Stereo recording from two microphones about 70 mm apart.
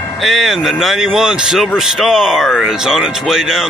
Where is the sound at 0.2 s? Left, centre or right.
Centre.